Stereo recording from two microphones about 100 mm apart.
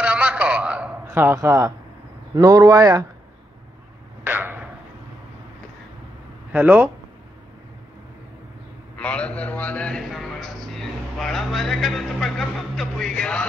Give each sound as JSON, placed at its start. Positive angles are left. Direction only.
{"t": 0.0, "sound": "a sound", "side_deg": -15}
{"t": 2.4, "sound": "speech", "side_deg": -40}
{"t": 4.2, "sound": "a sound", "side_deg": -20}
{"t": 6.5, "sound": "speech", "side_deg": -15}
{"t": 8.9, "sound": "a man's voice", "side_deg": 10}
{"t": 10.1, "sound": "music", "side_deg": 0}